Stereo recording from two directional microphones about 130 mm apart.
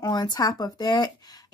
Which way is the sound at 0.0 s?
30° left (ahead or behind).